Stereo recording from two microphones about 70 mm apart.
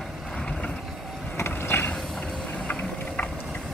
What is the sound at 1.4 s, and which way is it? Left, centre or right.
Vehicle, left.